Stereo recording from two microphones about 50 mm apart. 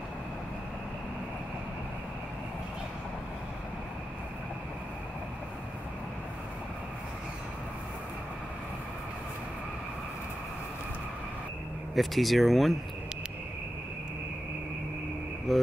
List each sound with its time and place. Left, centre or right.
11.9 s speech: centre
15.5 s insect: centre